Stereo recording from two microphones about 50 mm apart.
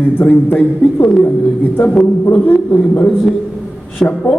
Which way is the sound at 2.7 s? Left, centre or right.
Left.